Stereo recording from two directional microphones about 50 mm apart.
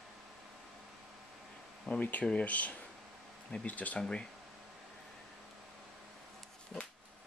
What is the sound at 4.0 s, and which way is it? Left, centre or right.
Speech, centre.